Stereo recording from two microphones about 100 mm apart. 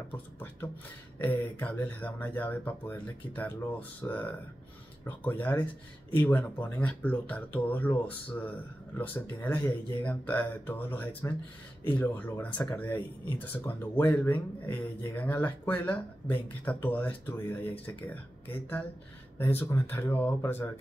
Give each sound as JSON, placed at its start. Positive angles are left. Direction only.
{"t": 0.1, "sound": "speech", "side_deg": 20}